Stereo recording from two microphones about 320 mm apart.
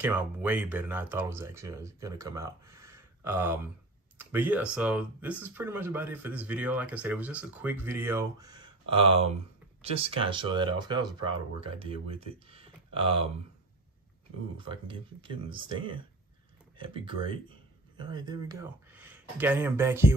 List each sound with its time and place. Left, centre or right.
0.0 s speech: centre
12.4 s a sound: centre
14.7 s speech: centre